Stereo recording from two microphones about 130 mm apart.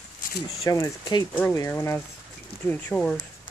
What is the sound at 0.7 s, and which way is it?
Speech, 30° left (ahead or behind).